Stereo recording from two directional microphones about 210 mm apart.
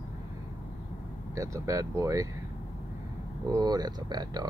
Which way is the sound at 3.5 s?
20° right (ahead or behind).